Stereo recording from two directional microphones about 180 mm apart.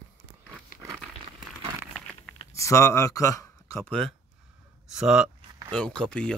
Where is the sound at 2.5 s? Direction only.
15° left (ahead or behind).